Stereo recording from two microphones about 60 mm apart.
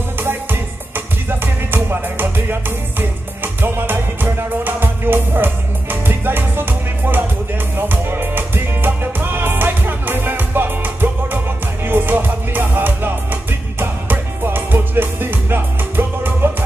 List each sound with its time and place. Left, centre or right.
0.2 s music: right